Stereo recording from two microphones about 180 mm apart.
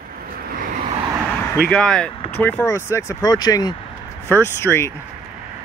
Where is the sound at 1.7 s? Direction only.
5° left (ahead or behind).